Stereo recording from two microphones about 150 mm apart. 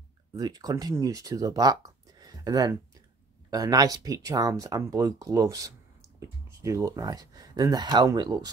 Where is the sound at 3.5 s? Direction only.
25° right (ahead or behind).